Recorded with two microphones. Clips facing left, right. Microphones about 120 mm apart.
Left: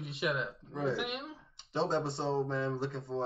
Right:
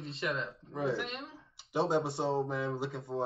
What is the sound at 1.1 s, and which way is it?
Speech, centre (ahead or behind).